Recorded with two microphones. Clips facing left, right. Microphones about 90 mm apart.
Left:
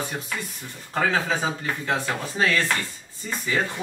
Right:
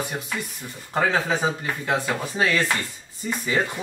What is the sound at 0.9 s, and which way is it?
Speech, 15° right (ahead or behind).